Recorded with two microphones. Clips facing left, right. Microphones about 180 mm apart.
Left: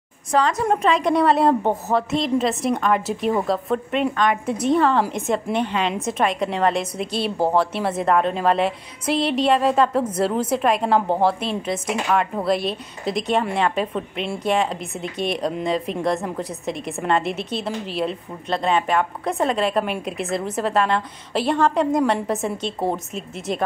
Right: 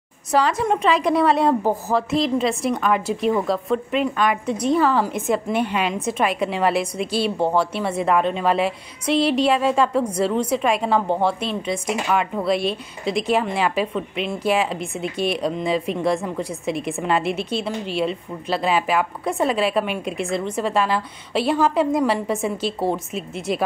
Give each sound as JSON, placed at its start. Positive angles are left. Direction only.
{"t": 0.3, "sound": "a woman's voice", "side_deg": -10}